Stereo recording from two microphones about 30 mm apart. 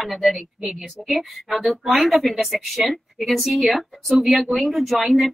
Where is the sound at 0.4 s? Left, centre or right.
Right.